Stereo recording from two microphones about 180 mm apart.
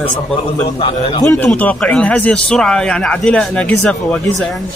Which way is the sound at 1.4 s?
5° left (ahead or behind).